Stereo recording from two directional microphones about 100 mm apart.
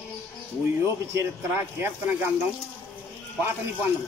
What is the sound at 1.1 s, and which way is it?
Speech, 25° right (ahead or behind).